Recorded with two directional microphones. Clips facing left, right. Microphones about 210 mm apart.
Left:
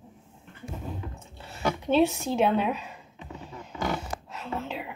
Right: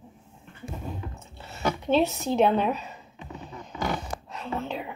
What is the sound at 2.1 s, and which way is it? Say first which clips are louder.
Speech: right 2 dB; 10° left (ahead or behind).